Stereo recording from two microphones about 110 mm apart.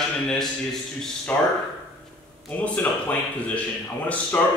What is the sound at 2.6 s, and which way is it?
Speech, 10° left (ahead or behind).